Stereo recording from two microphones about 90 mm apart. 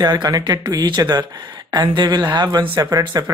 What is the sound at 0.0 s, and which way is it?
A woman's voice, 45° right (ahead or behind).